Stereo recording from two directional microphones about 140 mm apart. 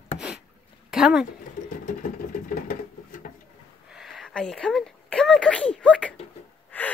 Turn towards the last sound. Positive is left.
turn(degrees=10)  # may be behind; listen again after turning